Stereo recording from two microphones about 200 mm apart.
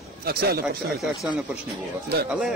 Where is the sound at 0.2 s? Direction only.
50° right (ahead or behind).